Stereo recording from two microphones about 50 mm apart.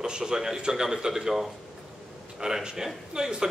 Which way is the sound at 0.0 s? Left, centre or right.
Centre.